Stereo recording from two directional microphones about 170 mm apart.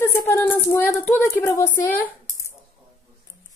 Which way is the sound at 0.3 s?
10° left (ahead or behind).